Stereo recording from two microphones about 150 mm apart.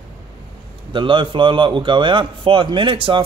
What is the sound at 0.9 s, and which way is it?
Speech, 35° right (ahead or behind).